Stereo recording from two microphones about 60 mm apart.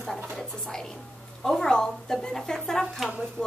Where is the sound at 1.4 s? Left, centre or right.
Centre.